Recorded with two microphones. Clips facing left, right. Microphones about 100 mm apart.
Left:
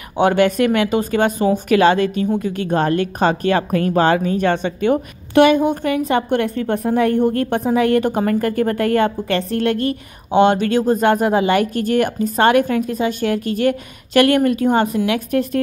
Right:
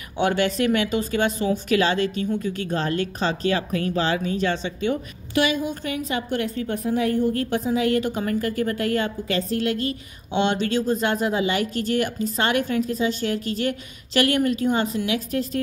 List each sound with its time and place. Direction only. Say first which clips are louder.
0.2 s a woman's voice: left 7 dB; 50° left (ahead or behind)
10.3 s speech: left 8 dB; 45° left (ahead or behind)